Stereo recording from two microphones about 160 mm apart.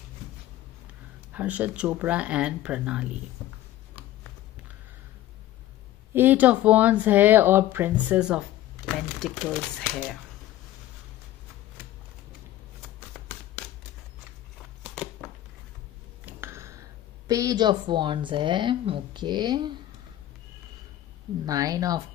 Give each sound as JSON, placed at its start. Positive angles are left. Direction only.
{"t": 1.3, "sound": "speech", "side_deg": -10}
{"t": 6.1, "sound": "speech", "side_deg": -10}
{"t": 16.3, "sound": "a sound", "side_deg": -15}
{"t": 17.3, "sound": "speech", "side_deg": -20}
{"t": 21.5, "sound": "speech", "side_deg": -20}